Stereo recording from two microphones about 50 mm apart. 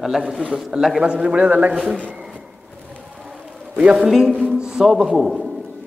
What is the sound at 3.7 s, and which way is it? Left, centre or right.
Speech, right.